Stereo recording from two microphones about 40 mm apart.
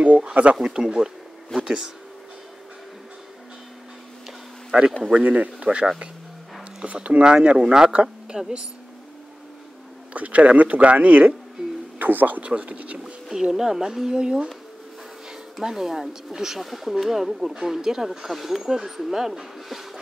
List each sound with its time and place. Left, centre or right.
0.0 s speech: right
0.6 s speech: centre
4.7 s speech: right
5.1 s speech: right; by 8.6 s centre
10.1 s speech: right
12.0 s speech: right
12.4 s speech: right
13.0 s speech: centre
15.6 s speech: centre